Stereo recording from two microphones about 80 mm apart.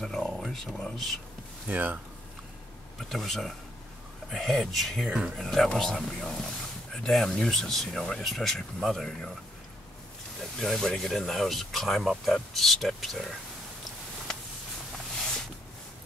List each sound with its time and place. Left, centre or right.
0.0 s a sound: centre
0.3 s speech: centre
1.7 s speech: right
3.0 s speech: centre
10.4 s speech: centre